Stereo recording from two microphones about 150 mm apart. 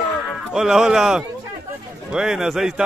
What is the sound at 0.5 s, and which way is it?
A man's voice, 5° right (ahead or behind).